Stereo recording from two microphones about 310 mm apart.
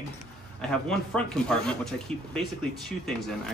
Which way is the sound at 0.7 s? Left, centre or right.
Centre.